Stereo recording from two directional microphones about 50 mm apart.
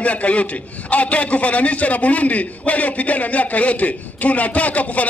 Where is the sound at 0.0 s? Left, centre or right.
Left.